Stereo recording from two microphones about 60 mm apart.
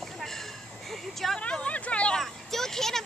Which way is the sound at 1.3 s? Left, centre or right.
Centre.